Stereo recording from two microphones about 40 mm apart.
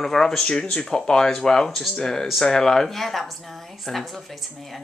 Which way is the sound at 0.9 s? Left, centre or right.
Centre.